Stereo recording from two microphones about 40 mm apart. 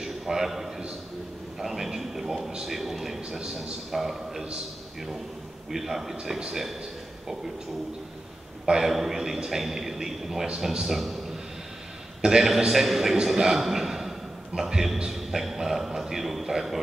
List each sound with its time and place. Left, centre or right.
0.0 s a sound: centre
1.6 s a man's voice: centre
5.7 s a man's voice: centre
8.6 s a man's voice: centre
12.2 s a man's voice: centre